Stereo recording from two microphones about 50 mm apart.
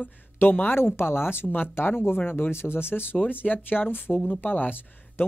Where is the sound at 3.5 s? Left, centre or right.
Left.